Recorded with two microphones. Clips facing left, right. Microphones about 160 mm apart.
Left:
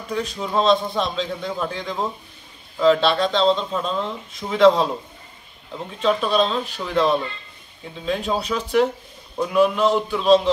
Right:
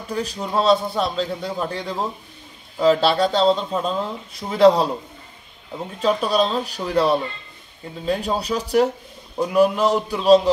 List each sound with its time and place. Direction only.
0.4 s a man's voice: 5° right (ahead or behind)
2.8 s speech: 40° right (ahead or behind)
3.3 s a man's voice: 5° right (ahead or behind)
4.5 s speech: 35° right (ahead or behind)
5.9 s speech: 40° right (ahead or behind)